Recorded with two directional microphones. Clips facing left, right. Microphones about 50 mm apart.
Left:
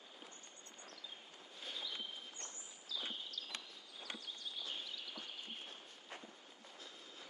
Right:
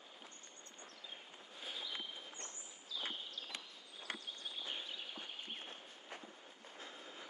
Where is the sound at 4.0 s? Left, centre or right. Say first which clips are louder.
Right 2 dB; right.